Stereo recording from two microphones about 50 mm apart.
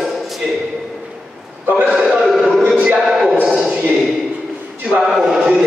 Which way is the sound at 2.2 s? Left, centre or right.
Centre.